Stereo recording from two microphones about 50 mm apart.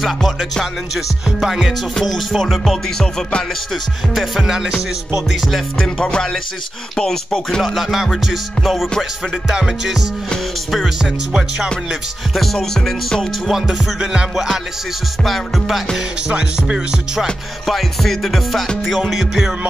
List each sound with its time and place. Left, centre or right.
0.0 s music: centre
4.1 s music: centre
5.3 s music: centre
5.8 s music: centre
7.6 s music: centre
12.5 s music: centre
13.5 s music: centre
16.3 s music: centre
17.6 s music: centre